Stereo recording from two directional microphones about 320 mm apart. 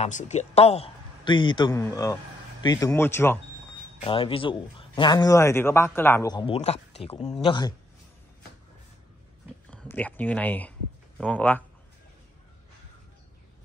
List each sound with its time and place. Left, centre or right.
0.0 s a man's voice: left
9.7 s speech: centre